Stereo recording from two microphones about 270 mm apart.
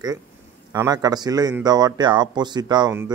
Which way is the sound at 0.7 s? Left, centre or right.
Centre.